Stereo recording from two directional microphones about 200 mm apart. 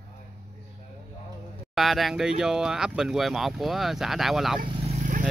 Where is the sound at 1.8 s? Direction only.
Centre (ahead or behind).